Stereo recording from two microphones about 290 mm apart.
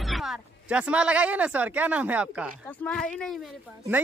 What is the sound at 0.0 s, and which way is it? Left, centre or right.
Speech, centre.